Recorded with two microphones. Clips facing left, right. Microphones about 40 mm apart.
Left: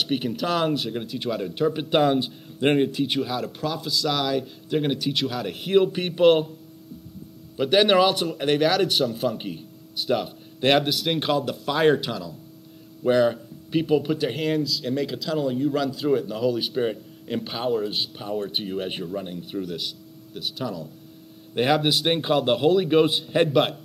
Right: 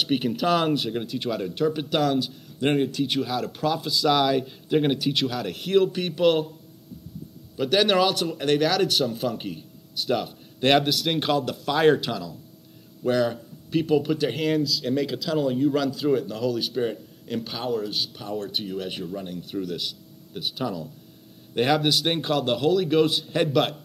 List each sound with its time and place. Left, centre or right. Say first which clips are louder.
0.0 s speech: right 2 dB; centre
1.9 s speech: left 3 dB; left
2.7 s speech: left 1 dB; centre
7.5 s speech: left 2 dB; centre
21.5 s speech: left 1 dB; centre